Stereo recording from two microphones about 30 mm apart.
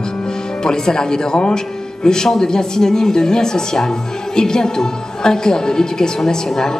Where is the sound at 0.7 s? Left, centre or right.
Left.